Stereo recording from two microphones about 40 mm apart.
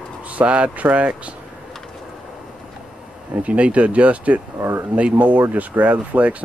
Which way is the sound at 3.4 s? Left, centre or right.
Right.